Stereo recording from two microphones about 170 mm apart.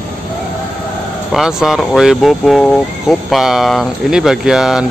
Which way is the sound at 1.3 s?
5° right (ahead or behind).